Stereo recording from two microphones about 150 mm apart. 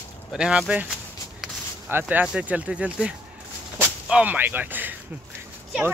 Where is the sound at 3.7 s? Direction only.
10° right (ahead or behind).